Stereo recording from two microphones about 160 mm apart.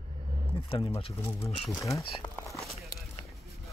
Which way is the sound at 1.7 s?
20° left (ahead or behind).